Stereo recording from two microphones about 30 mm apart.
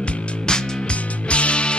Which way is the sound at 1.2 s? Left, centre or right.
Left.